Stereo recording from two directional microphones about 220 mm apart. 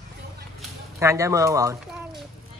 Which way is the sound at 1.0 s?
15° right (ahead or behind).